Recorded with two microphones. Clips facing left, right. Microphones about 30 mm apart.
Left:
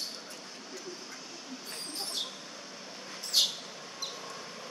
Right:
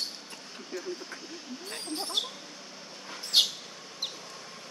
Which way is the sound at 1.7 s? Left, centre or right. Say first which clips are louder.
Right 7 dB; right.